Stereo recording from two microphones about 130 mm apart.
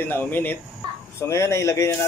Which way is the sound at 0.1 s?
15° left (ahead or behind).